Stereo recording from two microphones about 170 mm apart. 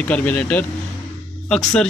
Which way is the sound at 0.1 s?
10° left (ahead or behind).